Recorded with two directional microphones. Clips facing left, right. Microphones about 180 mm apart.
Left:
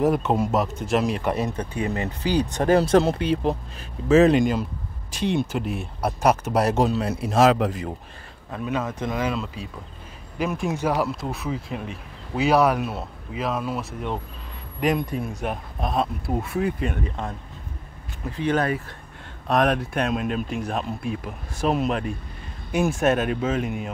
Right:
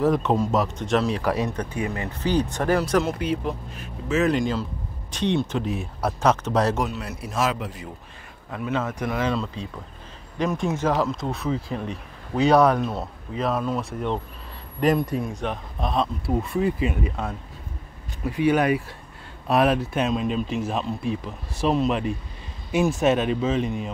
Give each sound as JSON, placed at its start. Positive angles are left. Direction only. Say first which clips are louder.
{"t": 0.1, "sound": "speech", "louder": "even", "side_deg": 5}
{"t": 2.2, "sound": "speech", "louder": "left 1 dB", "side_deg": 15}
{"t": 5.1, "sound": "speech", "louder": "even", "side_deg": 10}
{"t": 6.8, "sound": "speech", "louder": "left 6 dB", "side_deg": 30}
{"t": 7.3, "sound": "speech", "louder": "left 7 dB", "side_deg": 85}
{"t": 8.5, "sound": "speech", "louder": "even", "side_deg": 20}
{"t": 9.3, "sound": "speech", "louder": "right 2 dB", "side_deg": 5}